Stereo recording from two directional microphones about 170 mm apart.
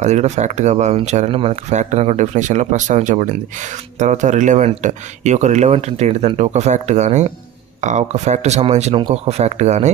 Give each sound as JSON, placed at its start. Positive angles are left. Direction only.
{"t": 0.0, "sound": "speech", "side_deg": -45}